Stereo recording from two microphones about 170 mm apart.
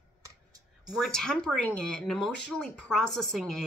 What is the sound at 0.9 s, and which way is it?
Speech, centre (ahead or behind).